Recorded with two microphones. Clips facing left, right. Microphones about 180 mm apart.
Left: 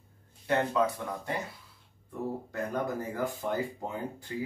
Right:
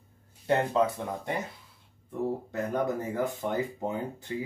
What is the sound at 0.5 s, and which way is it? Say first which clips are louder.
Speech: right 2 dB; 25° right (ahead or behind).